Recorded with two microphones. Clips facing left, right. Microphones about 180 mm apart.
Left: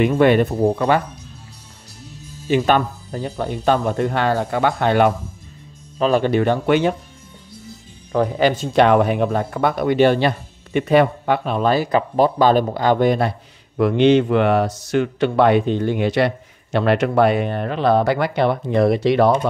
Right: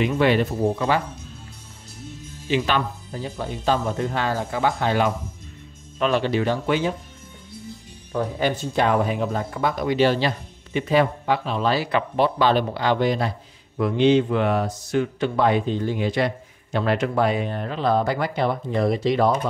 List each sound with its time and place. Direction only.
0.0 s speech: 50° left (ahead or behind)
2.4 s speech: 50° left (ahead or behind)
5.9 s speech: 40° left (ahead or behind); by 7.0 s 65° left (ahead or behind)
8.1 s speech: 85° left; by 13.3 s 55° left (ahead or behind)
13.7 s speech: 70° left (ahead or behind)